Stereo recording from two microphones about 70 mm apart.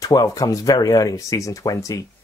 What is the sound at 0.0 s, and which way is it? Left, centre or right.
Speech, left.